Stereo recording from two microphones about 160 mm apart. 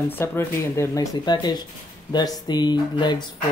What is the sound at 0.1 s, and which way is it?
Speech, 15° left (ahead or behind).